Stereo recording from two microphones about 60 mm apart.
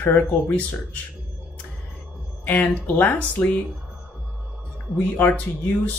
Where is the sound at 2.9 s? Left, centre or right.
Left.